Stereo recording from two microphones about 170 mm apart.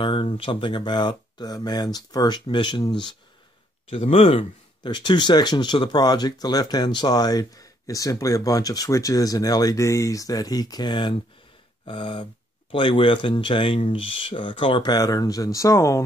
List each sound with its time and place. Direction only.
0.0 s speech: 30° left (ahead or behind)